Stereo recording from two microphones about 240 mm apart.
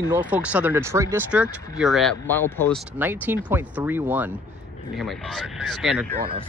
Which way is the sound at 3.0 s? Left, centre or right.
Centre.